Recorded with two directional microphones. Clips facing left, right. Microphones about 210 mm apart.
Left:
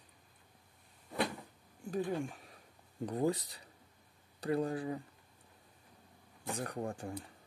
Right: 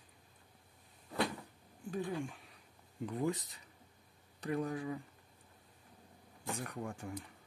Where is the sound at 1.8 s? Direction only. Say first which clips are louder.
Left 3 dB; 45° left (ahead or behind).